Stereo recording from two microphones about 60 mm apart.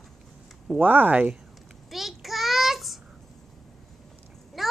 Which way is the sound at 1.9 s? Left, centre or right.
Centre.